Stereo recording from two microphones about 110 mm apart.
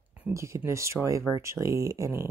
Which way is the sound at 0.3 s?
25° right (ahead or behind).